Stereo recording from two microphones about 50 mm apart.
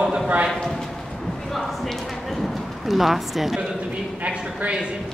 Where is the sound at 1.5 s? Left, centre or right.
Centre.